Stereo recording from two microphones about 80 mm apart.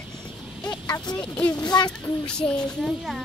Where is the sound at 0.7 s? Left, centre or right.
Left.